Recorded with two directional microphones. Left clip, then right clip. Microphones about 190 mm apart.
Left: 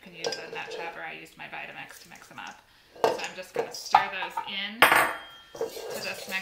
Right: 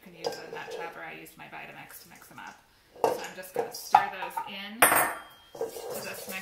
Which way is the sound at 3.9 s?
Centre (ahead or behind).